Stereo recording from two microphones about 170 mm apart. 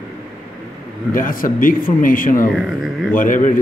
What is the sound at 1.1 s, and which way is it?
Speech, 55° left (ahead or behind).